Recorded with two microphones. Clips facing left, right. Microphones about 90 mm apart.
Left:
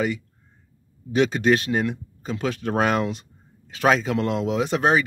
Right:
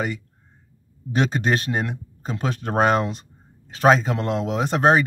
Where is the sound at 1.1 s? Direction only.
35° right (ahead or behind).